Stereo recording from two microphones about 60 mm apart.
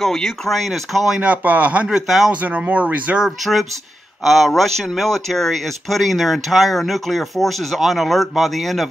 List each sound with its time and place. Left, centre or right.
0.0 s speech: centre
1.2 s speech: right
1.9 s speech: centre
2.4 s speech: right
3.3 s a man's voice: centre